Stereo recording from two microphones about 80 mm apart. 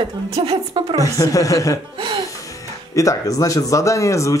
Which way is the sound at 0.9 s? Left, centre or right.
Left.